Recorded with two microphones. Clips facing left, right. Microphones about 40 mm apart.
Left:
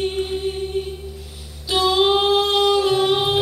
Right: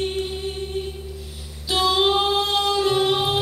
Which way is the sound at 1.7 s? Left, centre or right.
Centre.